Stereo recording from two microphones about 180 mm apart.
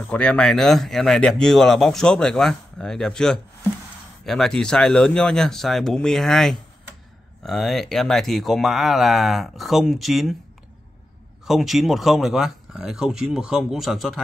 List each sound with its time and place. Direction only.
0.1 s speech: 5° left (ahead or behind)
11.4 s speech: centre (ahead or behind)